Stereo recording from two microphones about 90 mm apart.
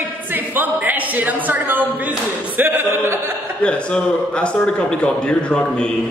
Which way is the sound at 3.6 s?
10° left (ahead or behind).